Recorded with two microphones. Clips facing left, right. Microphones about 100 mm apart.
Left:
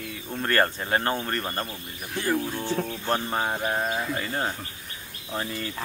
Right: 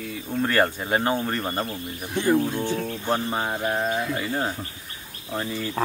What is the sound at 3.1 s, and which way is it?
Speech, 5° left (ahead or behind).